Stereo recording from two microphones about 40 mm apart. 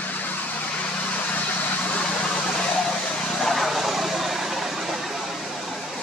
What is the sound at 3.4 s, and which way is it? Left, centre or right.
Vehicle, centre.